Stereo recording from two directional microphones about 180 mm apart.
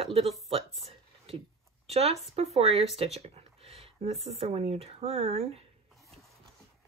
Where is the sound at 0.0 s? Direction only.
35° right (ahead or behind).